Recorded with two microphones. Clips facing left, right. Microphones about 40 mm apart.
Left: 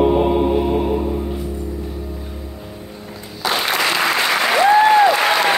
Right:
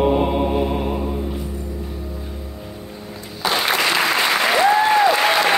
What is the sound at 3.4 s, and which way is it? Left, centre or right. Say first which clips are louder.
Applause: even; centre.